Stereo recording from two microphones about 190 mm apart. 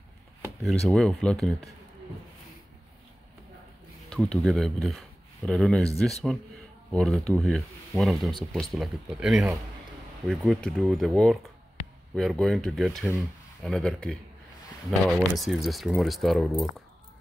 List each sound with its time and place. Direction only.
0.6 s speech: centre (ahead or behind)
4.1 s speech: centre (ahead or behind)
6.9 s speech: 5° left (ahead or behind)